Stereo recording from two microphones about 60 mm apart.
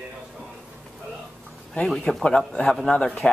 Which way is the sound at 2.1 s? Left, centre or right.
Centre.